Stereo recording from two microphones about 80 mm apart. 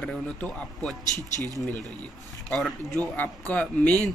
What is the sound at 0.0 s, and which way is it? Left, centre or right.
Speech, centre.